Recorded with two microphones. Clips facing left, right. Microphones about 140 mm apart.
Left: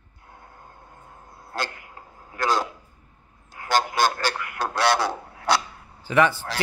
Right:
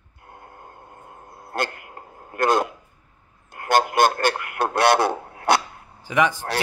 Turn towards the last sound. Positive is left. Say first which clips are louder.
# left 1 dB
turn(degrees=-15)  # may be behind; listen again after turning